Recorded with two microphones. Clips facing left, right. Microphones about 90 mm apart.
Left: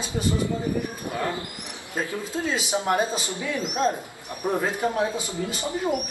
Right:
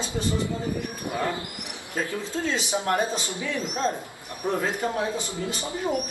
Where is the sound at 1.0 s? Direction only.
20° right (ahead or behind).